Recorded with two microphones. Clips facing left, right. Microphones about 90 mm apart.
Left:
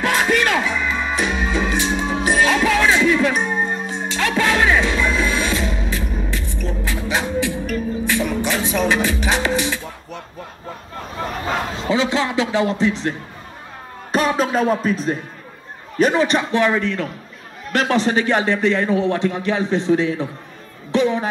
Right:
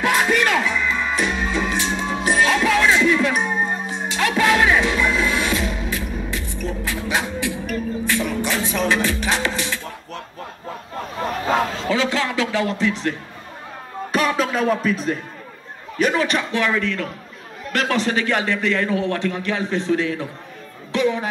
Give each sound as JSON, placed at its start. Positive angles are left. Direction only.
{"t": 0.0, "sound": "music", "side_deg": -5}
{"t": 11.7, "sound": "a man's voice", "side_deg": 20}
{"t": 14.1, "sound": "music", "side_deg": 30}
{"t": 16.0, "sound": "a man's voice", "side_deg": 30}